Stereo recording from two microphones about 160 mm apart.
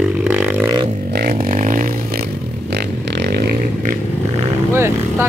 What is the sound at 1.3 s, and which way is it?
Music, 55° right (ahead or behind).